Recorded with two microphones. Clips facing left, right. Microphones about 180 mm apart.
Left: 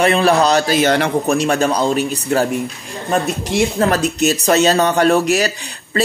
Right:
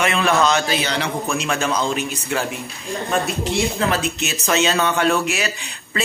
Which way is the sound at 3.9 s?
40° left (ahead or behind).